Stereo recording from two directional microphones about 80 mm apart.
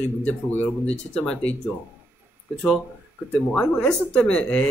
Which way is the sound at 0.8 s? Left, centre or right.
Centre.